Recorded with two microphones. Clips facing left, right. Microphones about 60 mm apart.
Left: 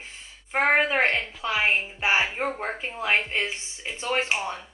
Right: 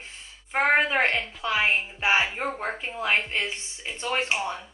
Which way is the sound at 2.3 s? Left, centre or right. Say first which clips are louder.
Left 2 dB; left.